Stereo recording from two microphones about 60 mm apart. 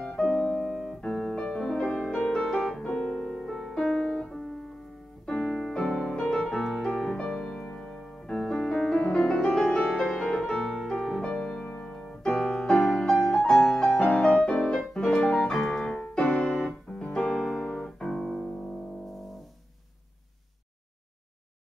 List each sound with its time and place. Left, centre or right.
0.1 s piano: centre
1.4 s music: centre
5.2 s piano: centre
6.2 s music: centre
15.8 s music: centre
16.2 s keyboard: centre